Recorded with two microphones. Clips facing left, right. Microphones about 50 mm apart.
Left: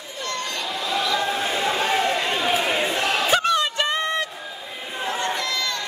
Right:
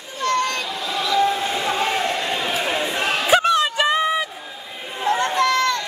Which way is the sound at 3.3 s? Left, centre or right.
Centre.